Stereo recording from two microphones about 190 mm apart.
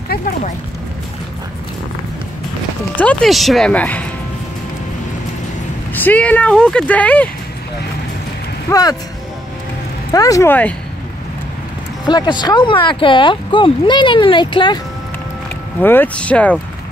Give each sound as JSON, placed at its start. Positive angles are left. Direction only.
{"t": 3.0, "sound": "speech", "side_deg": 5}
{"t": 5.9, "sound": "speech", "side_deg": 10}
{"t": 8.6, "sound": "speech", "side_deg": 20}
{"t": 10.1, "sound": "speech", "side_deg": 20}
{"t": 12.1, "sound": "speech", "side_deg": 25}
{"t": 15.8, "sound": "speech", "side_deg": 10}